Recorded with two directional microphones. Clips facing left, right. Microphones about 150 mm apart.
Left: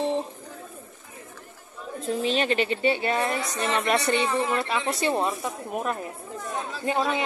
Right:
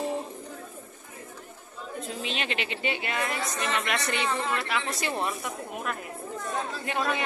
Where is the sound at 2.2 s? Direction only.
40° left (ahead or behind).